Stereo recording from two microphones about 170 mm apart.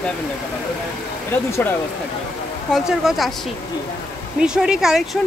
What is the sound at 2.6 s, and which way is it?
Speech, centre (ahead or behind).